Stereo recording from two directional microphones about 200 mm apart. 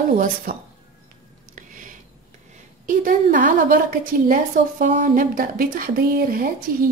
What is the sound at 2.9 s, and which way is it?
A woman's voice, 40° right (ahead or behind).